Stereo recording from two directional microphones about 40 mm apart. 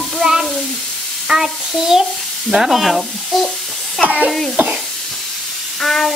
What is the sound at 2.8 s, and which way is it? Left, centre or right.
Sizzle, centre.